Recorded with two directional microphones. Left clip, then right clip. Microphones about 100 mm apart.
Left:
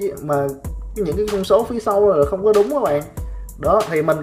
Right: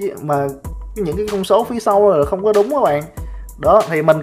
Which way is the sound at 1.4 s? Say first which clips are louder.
Right 3 dB; 30° right (ahead or behind).